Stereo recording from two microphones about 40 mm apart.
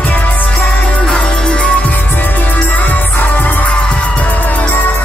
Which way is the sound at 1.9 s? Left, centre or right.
Left.